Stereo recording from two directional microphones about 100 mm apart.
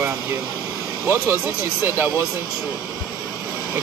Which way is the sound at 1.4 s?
20° right (ahead or behind).